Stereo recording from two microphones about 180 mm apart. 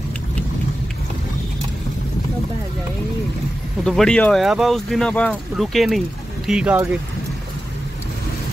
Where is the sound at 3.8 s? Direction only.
5° left (ahead or behind).